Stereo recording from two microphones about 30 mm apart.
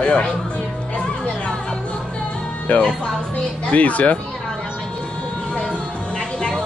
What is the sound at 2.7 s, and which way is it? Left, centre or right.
Speech, left.